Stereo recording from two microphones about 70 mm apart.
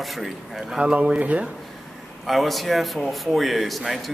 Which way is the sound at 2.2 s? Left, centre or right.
Centre.